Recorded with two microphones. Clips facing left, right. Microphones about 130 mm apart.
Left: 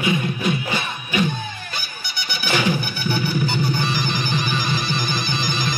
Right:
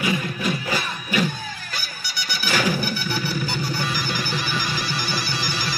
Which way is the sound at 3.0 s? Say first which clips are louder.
Left 4 dB; 55° left (ahead or behind).